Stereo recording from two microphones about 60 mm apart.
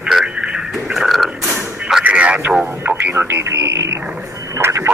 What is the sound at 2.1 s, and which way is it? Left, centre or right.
Speech, right.